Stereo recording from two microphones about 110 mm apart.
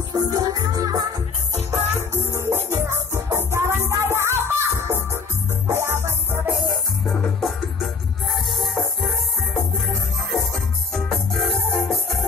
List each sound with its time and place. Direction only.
0.1 s music: 35° right (ahead or behind)
6.7 s music: centre (ahead or behind)
10.3 s music: centre (ahead or behind)